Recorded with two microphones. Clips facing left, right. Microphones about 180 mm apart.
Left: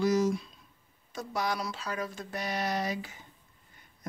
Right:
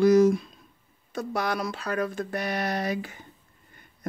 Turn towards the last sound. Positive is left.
turn(degrees=-60)  # may be behind; listen again after turning